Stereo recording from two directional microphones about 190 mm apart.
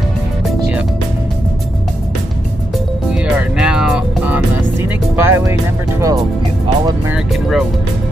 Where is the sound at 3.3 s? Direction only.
5° right (ahead or behind).